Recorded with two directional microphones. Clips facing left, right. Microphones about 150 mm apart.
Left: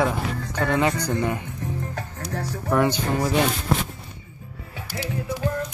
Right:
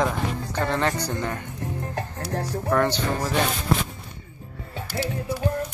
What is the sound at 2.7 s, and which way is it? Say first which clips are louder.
Speech: left 2 dB; 10° left (ahead or behind).